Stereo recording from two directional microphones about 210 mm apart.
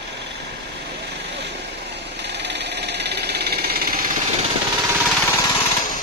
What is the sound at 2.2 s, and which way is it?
Engine, 55° right (ahead or behind).